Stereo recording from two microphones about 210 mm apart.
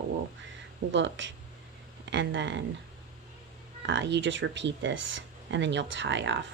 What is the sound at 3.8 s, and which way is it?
Speech, 60° right (ahead or behind).